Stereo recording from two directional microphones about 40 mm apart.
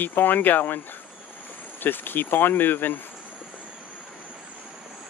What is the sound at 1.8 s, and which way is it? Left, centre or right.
Speech, left.